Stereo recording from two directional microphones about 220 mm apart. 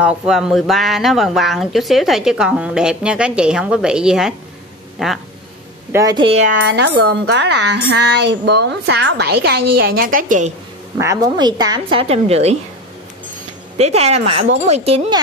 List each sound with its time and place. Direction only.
0.0 s speech: 5° right (ahead or behind)
5.9 s a woman's voice: 15° right (ahead or behind)
6.7 s speech: 50° right (ahead or behind)
11.0 s a woman's voice: 15° right (ahead or behind)
13.7 s a woman's voice: 30° right (ahead or behind)